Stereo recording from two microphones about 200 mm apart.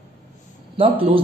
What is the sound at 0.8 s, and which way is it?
Speech, 25° right (ahead or behind).